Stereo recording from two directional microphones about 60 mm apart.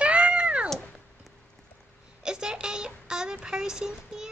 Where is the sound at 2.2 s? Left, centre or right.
Centre.